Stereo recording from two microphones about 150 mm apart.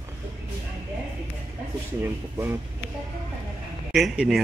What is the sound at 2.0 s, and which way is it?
Speech, 15° right (ahead or behind).